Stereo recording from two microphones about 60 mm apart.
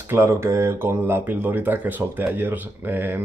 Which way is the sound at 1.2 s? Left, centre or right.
Right.